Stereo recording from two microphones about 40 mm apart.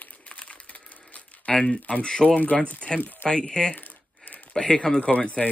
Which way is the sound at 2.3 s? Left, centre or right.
Left.